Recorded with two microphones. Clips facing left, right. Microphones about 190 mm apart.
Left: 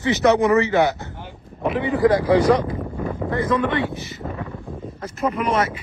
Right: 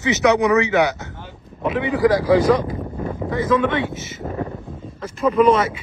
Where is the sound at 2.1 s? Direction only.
20° left (ahead or behind).